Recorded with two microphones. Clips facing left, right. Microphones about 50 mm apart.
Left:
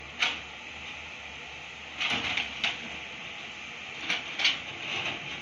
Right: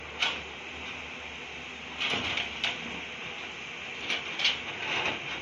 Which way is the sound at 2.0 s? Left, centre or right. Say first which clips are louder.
Left 1 dB; centre.